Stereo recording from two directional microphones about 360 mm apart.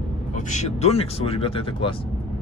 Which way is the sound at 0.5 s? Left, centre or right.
Centre.